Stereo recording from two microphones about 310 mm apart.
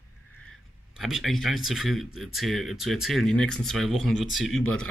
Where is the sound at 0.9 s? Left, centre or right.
Centre.